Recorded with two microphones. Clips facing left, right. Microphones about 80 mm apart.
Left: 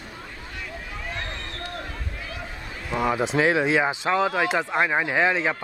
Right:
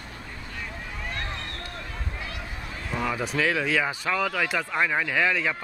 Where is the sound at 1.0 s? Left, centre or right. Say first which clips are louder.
Even; centre.